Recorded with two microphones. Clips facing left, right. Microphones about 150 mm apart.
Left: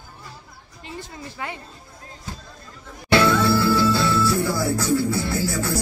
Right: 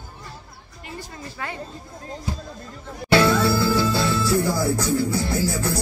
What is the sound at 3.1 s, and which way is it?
Music, 15° right (ahead or behind).